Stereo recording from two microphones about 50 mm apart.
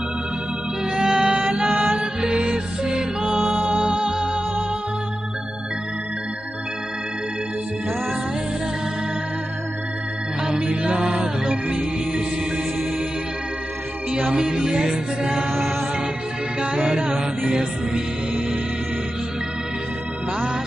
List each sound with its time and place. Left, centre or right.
0.9 s music: centre
10.6 s music: right
14.2 s mantra: centre
16.7 s mantra: centre